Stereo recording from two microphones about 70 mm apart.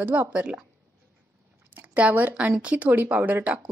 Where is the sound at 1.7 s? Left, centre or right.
Right.